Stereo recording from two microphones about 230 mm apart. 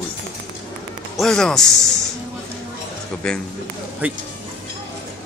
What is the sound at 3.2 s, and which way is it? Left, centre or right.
Speech, centre.